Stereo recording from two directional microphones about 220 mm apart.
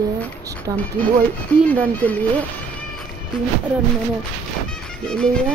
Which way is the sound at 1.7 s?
5° left (ahead or behind).